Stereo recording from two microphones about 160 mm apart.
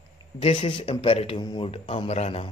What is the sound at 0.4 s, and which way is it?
Speech, 30° left (ahead or behind).